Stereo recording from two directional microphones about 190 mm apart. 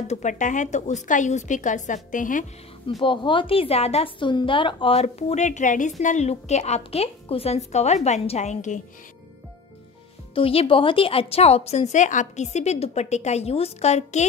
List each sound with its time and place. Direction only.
0.1 s a woman's voice: 40° left (ahead or behind)
3.0 s a woman's voice: 25° left (ahead or behind)
10.3 s a woman's voice: 30° left (ahead or behind)